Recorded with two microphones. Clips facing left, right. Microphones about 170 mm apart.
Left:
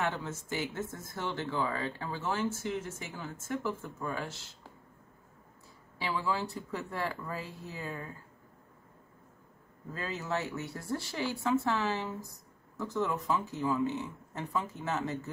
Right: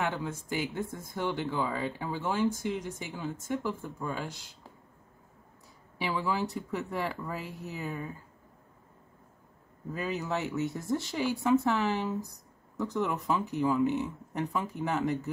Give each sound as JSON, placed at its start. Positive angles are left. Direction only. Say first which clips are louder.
{"t": 0.0, "sound": "speech", "louder": "right 2 dB", "side_deg": -15}
{"t": 5.9, "sound": "speech", "louder": "right 2 dB", "side_deg": -20}
{"t": 9.9, "sound": "speech", "louder": "right 3 dB", "side_deg": -15}